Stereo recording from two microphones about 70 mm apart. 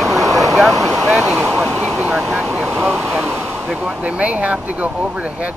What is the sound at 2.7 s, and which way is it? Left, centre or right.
Speech, centre.